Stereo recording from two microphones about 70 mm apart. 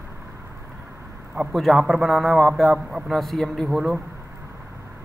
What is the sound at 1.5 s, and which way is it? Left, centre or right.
A man's voice, centre.